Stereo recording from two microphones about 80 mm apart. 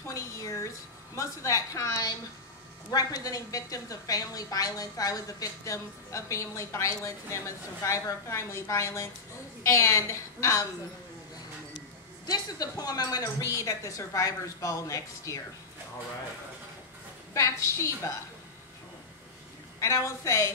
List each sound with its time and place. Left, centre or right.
0.1 s a woman's voice: left
12.3 s speech: left
13.5 s a woman's voice: left
17.3 s a woman's voice: left
19.8 s a woman's voice: left